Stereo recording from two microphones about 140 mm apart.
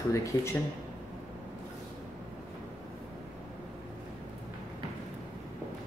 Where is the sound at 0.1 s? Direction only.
20° left (ahead or behind).